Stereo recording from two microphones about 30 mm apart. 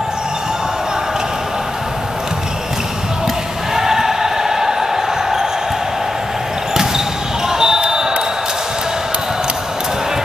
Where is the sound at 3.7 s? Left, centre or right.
Centre.